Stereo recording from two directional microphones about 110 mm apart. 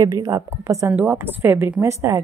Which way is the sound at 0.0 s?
35° right (ahead or behind).